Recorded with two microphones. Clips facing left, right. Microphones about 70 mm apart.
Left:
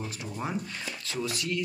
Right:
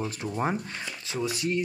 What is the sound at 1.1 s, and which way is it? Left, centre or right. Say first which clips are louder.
Speech: right 4 dB; right.